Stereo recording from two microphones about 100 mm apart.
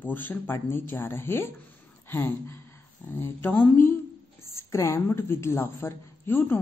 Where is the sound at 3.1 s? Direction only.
20° left (ahead or behind).